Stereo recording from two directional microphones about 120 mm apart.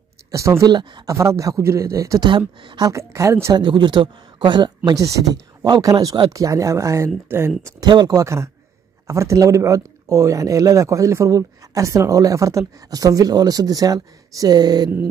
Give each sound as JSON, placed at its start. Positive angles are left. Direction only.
{"t": 0.3, "sound": "speech", "side_deg": -25}
{"t": 0.7, "sound": "speech", "side_deg": -40}
{"t": 1.1, "sound": "speech", "side_deg": -25}
{"t": 2.2, "sound": "speech", "side_deg": -40}
{"t": 2.9, "sound": "speech", "side_deg": -25}
{"t": 3.5, "sound": "speech", "side_deg": -40}
{"t": 7.8, "sound": "speech", "side_deg": -35}